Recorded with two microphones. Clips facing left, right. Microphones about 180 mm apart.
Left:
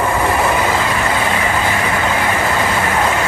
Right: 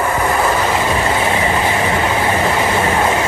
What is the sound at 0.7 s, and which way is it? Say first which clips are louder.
Vehicle: right 1 dB; 15° right (ahead or behind).